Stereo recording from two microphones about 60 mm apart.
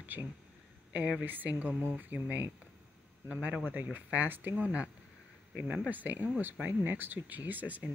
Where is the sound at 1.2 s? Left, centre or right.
Right.